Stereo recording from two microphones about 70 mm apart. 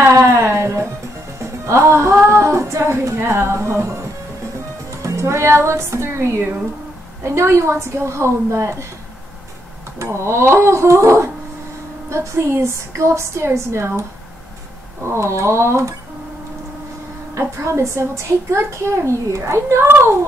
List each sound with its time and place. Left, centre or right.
0.1 s a sound: right
1.4 s music: right
5.0 s a child's voice: right
9.9 s a child's voice: right
15.0 s speech: right
17.4 s a child's voice: right